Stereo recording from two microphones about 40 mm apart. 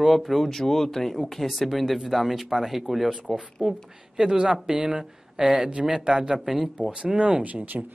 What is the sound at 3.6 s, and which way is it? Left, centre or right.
Speech, right.